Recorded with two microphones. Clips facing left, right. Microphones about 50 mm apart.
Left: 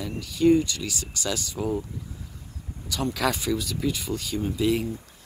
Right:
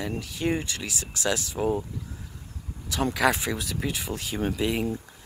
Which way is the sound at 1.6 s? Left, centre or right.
Right.